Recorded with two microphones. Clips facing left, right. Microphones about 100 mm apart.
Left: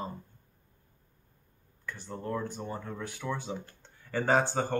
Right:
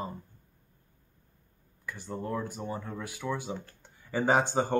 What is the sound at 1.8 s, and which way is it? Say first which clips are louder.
Speech: right 1 dB; 10° right (ahead or behind).